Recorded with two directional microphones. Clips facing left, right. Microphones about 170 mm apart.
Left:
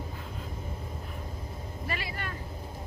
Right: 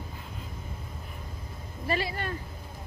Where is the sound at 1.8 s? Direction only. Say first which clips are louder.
Right 7 dB; 30° right (ahead or behind).